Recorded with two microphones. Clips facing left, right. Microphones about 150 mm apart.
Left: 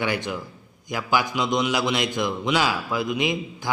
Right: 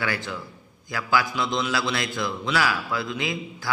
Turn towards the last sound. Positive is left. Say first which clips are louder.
# left 4 dB
turn(degrees=20)  # may be behind; listen again after turning